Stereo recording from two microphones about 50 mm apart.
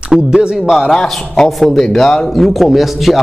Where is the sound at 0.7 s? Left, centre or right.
Centre.